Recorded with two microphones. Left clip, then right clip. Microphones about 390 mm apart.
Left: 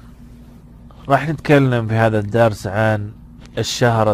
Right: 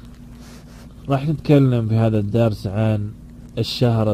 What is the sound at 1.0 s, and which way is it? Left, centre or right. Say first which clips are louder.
A man's voice: left 5 dB; centre.